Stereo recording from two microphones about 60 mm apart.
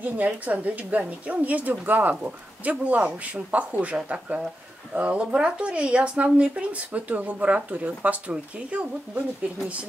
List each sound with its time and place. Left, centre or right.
0.0 s a woman's voice: right